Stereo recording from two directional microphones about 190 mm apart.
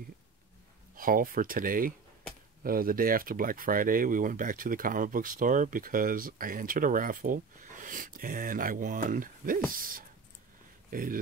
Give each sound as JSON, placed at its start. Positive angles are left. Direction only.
{"t": 0.9, "sound": "speech", "side_deg": -50}